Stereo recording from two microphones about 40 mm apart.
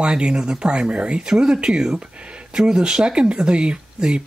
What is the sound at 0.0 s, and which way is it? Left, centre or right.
Speech, right.